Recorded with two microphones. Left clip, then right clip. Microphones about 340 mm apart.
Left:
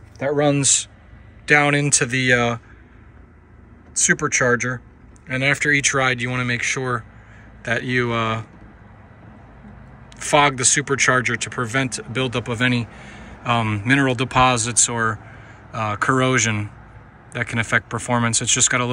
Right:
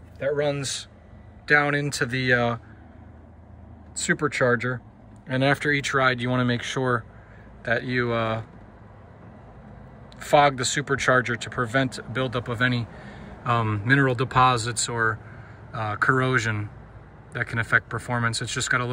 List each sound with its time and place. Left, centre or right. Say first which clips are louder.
0.3 s speech: left 7 dB; centre
4.0 s speech: left 5 dB; centre
10.1 s speech: left 2 dB; centre